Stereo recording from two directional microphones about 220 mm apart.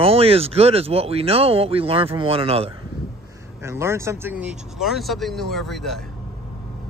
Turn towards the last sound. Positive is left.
turn(degrees=0)  # may be behind; listen again after turning